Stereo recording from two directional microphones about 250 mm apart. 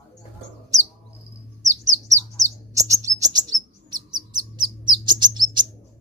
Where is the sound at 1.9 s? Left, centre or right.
Centre.